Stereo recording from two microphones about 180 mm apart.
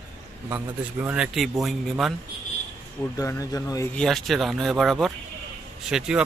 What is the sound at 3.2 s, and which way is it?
Speech, 20° left (ahead or behind).